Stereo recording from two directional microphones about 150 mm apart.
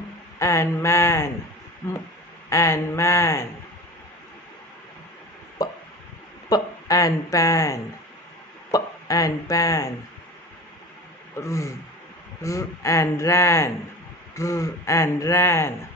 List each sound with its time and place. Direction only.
0.4 s speech: 20° left (ahead or behind)
2.5 s speech: 20° left (ahead or behind)
5.6 s a sound: 25° left (ahead or behind)
6.5 s speech: 25° left (ahead or behind)
11.3 s speech: 20° left (ahead or behind)